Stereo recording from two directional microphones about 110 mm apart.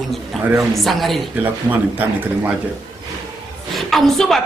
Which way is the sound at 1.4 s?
15° right (ahead or behind).